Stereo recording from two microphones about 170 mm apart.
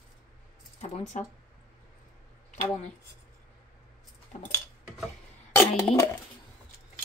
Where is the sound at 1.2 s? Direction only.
45° left (ahead or behind).